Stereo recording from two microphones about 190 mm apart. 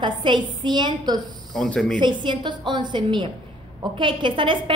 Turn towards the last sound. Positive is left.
turn(degrees=-25)  # may be behind; listen again after turning